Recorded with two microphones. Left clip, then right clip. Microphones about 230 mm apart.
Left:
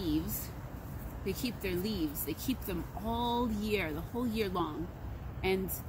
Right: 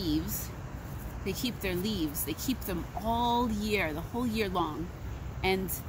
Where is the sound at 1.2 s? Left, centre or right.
Centre.